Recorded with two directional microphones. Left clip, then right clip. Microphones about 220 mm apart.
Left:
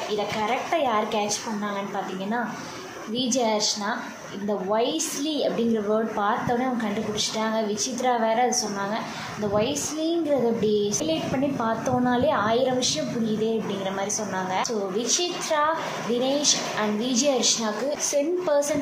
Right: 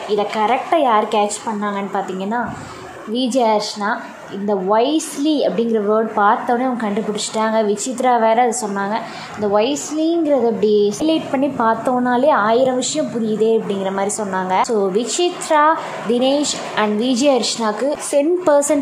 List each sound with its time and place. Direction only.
0.1 s a woman's voice: 25° right (ahead or behind)
3.2 s a woman's voice: 25° right (ahead or behind)